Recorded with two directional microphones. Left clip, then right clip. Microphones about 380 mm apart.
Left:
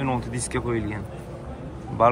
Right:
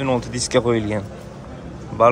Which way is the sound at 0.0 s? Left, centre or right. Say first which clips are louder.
Right 6 dB; centre.